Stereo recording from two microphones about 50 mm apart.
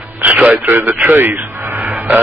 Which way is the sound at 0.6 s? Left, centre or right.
Right.